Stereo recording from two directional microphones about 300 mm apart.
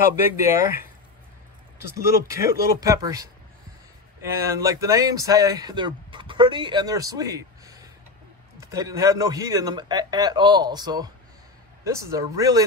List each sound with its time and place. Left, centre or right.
0.1 s speech: centre
1.9 s speech: centre